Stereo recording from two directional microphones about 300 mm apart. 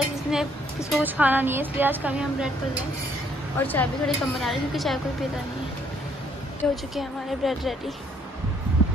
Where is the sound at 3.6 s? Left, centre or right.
Centre.